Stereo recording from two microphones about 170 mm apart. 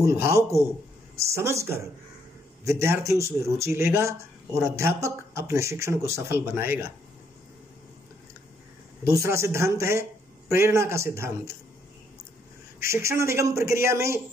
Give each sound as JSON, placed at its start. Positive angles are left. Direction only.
{"t": 0.0, "sound": "a man's voice", "side_deg": -15}
{"t": 9.0, "sound": "a man's voice", "side_deg": -15}
{"t": 12.8, "sound": "a man's voice", "side_deg": -15}